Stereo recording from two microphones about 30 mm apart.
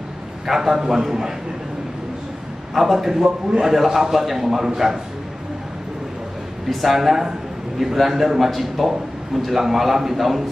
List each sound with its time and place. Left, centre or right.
0.5 s a man's voice: centre
2.7 s a man's voice: centre
6.7 s a man's voice: centre
8.5 s a man's voice: centre